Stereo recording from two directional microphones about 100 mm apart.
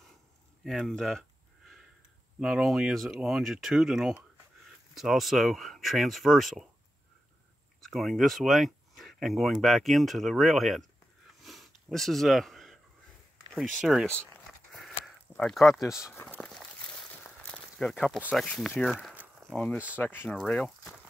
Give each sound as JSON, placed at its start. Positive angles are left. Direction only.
{"t": 0.7, "sound": "speech", "side_deg": 0}
{"t": 2.4, "sound": "speech", "side_deg": -5}
{"t": 7.8, "sound": "speech", "side_deg": 0}
{"t": 11.4, "sound": "sniff", "side_deg": 0}
{"t": 13.5, "sound": "speech", "side_deg": 0}
{"t": 14.1, "sound": "a sound", "side_deg": 10}
{"t": 15.3, "sound": "speech", "side_deg": 5}
{"t": 16.1, "sound": "a sound", "side_deg": 25}
{"t": 16.3, "sound": "crumpling", "side_deg": 5}
{"t": 17.1, "sound": "a sound", "side_deg": 15}
{"t": 18.3, "sound": "speech", "side_deg": 5}
{"t": 20.0, "sound": "speech", "side_deg": 20}
{"t": 20.2, "sound": "speech", "side_deg": 10}